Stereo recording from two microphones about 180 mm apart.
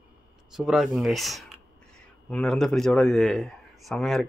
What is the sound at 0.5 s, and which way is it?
A man's voice, centre (ahead or behind).